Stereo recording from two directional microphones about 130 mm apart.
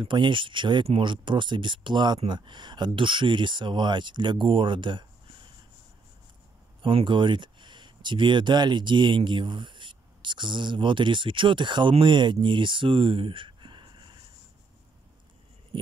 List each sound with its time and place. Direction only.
0.0 s speech: 35° right (ahead or behind)
6.8 s speech: 40° right (ahead or behind)